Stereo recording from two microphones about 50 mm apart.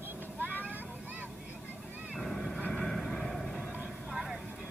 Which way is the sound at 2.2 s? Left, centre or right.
Centre.